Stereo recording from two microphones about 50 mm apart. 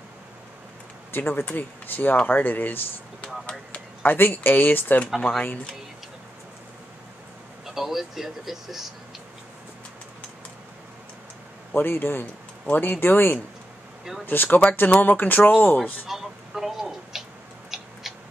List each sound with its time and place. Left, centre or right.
1.1 s speech: left
7.6 s speech: centre
11.7 s speech: left
12.6 s speech: left
16.1 s a sound: centre